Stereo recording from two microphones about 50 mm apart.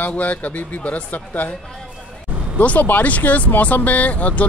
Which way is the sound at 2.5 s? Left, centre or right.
Left.